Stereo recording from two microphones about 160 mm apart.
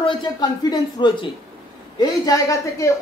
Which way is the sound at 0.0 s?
35° left (ahead or behind).